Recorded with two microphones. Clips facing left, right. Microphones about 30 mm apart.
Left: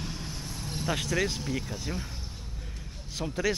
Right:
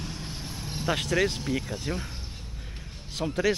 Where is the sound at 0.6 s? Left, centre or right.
Centre.